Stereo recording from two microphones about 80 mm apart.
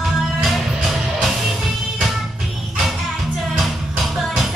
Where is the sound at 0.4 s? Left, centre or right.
Centre.